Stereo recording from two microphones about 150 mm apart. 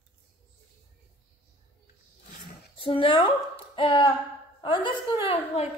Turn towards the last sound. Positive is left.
turn(degrees=40)  # may be behind; listen again after turning